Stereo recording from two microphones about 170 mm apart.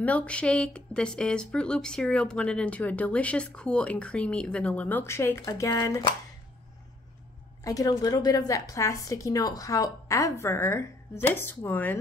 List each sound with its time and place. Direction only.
0.0 s speech: 10° left (ahead or behind)
7.6 s a woman's voice: 20° left (ahead or behind)